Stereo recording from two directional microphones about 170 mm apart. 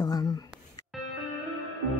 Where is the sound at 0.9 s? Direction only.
Centre (ahead or behind).